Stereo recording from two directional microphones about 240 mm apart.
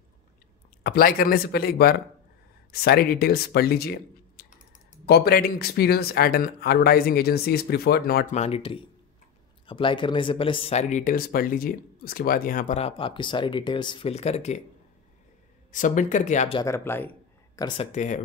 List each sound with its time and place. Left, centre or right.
0.8 s speech: left
8.4 s speech: left
15.7 s speech: left
16.6 s speech: centre
17.9 s speech: left